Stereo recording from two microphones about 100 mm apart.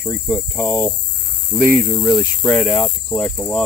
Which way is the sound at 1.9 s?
5° left (ahead or behind).